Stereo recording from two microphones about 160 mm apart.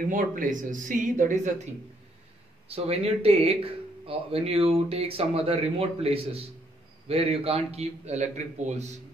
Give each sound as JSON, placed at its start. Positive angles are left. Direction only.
{"t": 0.1, "sound": "speech", "side_deg": -55}
{"t": 2.7, "sound": "a man's voice", "side_deg": -40}